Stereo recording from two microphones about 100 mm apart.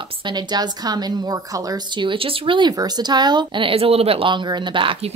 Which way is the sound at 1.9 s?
60° right (ahead or behind).